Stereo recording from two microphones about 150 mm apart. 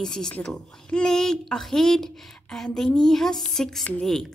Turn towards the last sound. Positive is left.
turn(degrees=5)  # may be behind; listen again after turning